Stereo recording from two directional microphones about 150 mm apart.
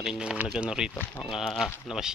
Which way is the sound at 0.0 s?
5° right (ahead or behind).